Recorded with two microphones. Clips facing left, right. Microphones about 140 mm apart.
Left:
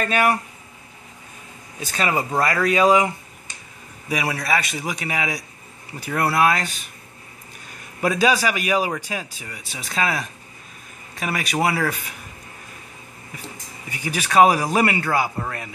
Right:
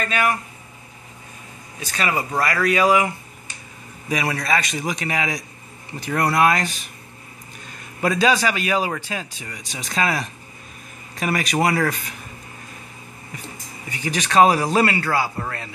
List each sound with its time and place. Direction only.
0.0 s speech: 35° left (ahead or behind)
2.0 s speech: 25° left (ahead or behind)
4.1 s a man's voice: 10° left (ahead or behind)
8.0 s a man's voice: 10° left (ahead or behind)
13.8 s a man's voice: 10° left (ahead or behind)